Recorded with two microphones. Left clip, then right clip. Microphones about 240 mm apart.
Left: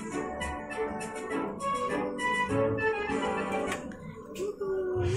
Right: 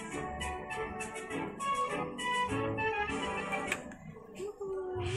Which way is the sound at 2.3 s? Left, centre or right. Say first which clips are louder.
Left 4 dB; left.